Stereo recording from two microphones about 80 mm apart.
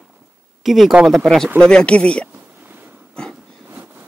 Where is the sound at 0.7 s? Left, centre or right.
Centre.